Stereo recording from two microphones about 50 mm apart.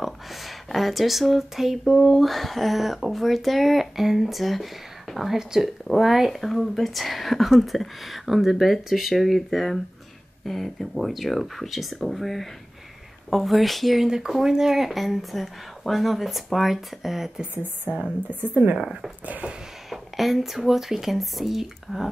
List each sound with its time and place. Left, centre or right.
0.0 s speech: centre
2.2 s speech: centre
5.4 s speech: centre
5.9 s speech: centre
14.0 s speech: centre
17.4 s speech: right
18.3 s a woman's voice: right
18.8 s speech: centre
19.2 s a woman's voice: right
19.9 s speech: centre